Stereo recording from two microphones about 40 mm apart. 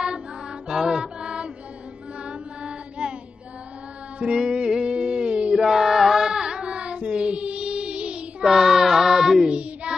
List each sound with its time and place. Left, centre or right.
0.7 s music: centre
2.2 s mantra: right
4.2 s music: right
5.5 s chant: centre; by 8.5 s right
8.5 s music: centre
9.5 s child singing: right